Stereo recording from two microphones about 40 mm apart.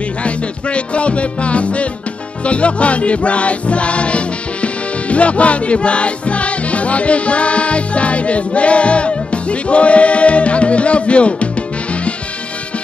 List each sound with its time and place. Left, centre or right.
0.2 s music: left